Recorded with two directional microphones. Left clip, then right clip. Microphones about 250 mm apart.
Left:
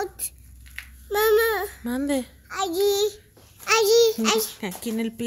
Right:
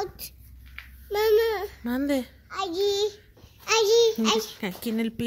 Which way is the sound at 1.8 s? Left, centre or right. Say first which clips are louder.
Left 1 dB; centre.